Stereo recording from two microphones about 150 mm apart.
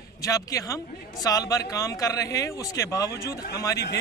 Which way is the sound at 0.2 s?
20° left (ahead or behind).